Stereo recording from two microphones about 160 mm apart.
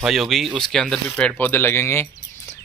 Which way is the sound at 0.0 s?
Centre (ahead or behind).